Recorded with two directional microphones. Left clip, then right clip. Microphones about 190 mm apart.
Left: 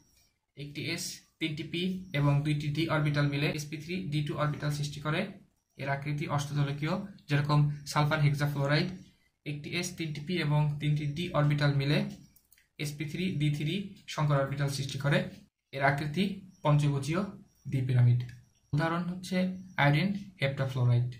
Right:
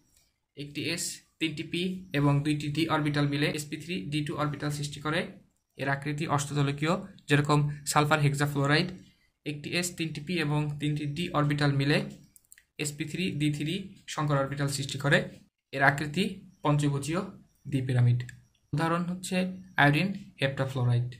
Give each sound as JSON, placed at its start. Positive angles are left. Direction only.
{"t": 0.6, "sound": "speech", "side_deg": -50}